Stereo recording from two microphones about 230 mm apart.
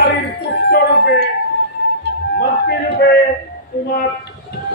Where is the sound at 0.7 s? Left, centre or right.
Left.